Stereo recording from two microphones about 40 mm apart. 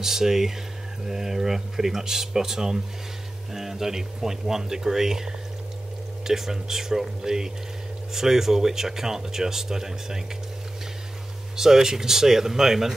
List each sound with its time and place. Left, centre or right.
0.0 s speech: centre
11.5 s speech: centre